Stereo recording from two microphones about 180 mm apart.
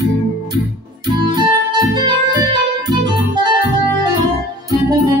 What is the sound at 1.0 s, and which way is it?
Music, 25° right (ahead or behind).